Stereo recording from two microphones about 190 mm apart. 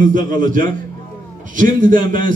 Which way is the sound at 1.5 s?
45° right (ahead or behind).